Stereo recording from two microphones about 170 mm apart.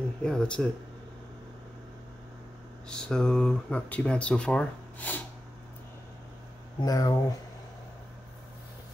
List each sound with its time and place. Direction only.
0.2 s speech: 5° left (ahead or behind)
2.9 s speech: 5° left (ahead or behind)
6.8 s speech: 25° left (ahead or behind)